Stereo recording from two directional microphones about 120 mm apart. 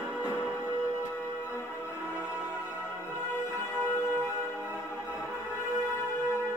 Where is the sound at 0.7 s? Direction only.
20° left (ahead or behind).